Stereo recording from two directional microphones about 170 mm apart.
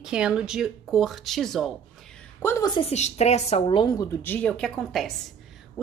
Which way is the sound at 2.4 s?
20° left (ahead or behind).